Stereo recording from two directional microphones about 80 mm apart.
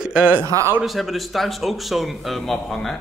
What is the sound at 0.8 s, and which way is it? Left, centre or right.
A man's voice, centre.